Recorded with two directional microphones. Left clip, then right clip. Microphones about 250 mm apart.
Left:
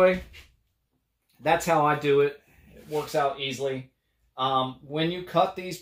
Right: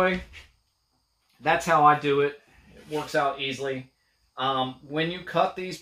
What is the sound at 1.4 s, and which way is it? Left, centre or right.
Speech, centre.